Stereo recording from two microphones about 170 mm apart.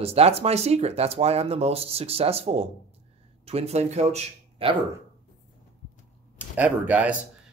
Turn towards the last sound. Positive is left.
turn(degrees=-10)  # may be behind; listen again after turning